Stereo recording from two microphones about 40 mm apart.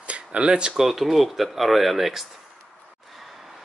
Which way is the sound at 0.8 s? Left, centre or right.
Centre.